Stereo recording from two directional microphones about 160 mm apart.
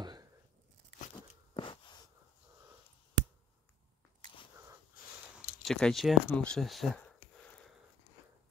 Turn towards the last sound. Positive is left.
turn(degrees=5)  # may be behind; listen again after turning